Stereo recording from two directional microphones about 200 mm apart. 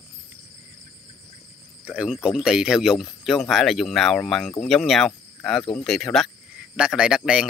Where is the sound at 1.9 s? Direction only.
5° right (ahead or behind).